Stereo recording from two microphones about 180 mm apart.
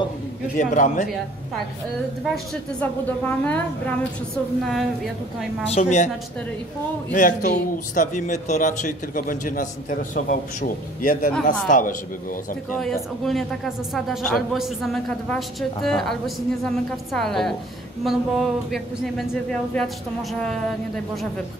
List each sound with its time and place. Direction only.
0.6 s a man's voice: 45° left (ahead or behind)
2.2 s a woman's voice: centre (ahead or behind)
5.7 s a woman's voice: 40° left (ahead or behind)
7.2 s a man's voice: 45° left (ahead or behind)
13.2 s a woman's voice: centre (ahead or behind)